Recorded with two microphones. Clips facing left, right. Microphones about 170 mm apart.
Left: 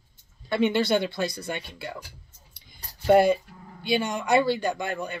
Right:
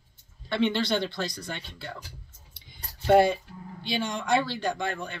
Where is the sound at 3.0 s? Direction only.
Centre (ahead or behind).